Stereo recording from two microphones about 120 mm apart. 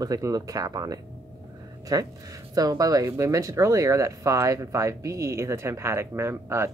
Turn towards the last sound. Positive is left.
turn(degrees=-20)  # may be behind; listen again after turning